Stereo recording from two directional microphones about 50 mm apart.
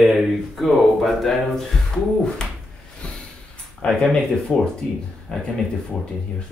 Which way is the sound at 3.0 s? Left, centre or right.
Centre.